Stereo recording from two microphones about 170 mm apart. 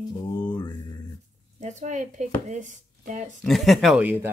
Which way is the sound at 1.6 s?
45° right (ahead or behind).